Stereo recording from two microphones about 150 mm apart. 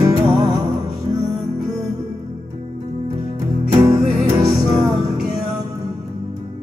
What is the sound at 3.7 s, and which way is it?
Music, 20° right (ahead or behind).